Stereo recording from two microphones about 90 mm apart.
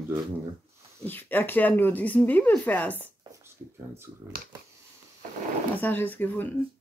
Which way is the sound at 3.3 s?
30° right (ahead or behind).